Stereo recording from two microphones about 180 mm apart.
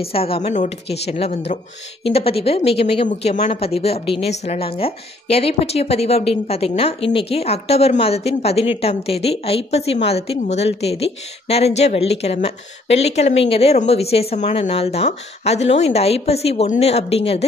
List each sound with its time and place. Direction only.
0.0 s speech: 35° left (ahead or behind)